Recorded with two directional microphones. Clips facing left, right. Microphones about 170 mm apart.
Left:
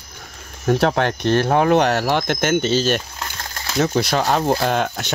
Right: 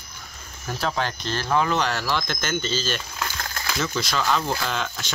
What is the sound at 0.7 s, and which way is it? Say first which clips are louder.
Speech: left 9 dB; 65° left (ahead or behind).